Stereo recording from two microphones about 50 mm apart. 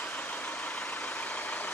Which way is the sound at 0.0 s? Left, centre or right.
Left.